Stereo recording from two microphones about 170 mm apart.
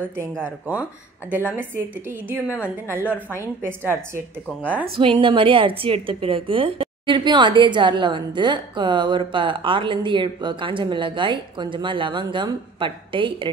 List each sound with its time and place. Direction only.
1.3 s a woman's voice: 10° right (ahead or behind)
4.9 s a woman's voice: 30° right (ahead or behind)